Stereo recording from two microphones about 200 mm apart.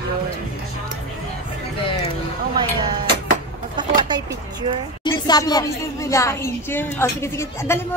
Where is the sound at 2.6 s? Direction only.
25° right (ahead or behind).